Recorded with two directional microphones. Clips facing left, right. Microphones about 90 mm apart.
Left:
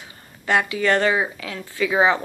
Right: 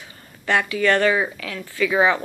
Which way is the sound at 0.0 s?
20° left (ahead or behind).